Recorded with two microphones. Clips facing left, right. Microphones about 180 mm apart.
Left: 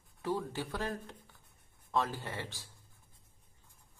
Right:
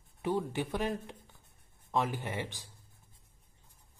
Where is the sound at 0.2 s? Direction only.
20° right (ahead or behind).